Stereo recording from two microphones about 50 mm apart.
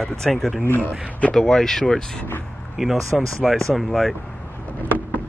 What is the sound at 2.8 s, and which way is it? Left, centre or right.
Speech, centre.